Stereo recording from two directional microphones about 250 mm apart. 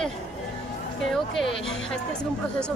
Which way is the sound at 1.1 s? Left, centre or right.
Centre.